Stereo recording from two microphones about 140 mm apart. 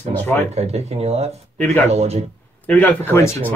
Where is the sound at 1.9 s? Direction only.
50° right (ahead or behind).